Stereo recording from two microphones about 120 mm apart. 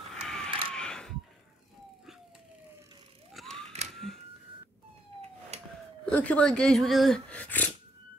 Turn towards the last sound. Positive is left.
turn(degrees=15)  # may be behind; listen again after turning